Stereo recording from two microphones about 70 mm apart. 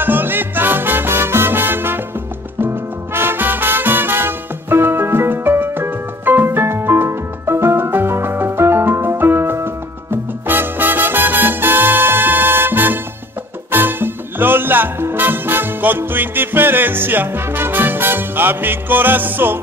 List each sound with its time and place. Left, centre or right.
0.0 s music: right